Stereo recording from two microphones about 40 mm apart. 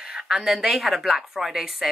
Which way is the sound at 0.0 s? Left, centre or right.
Centre.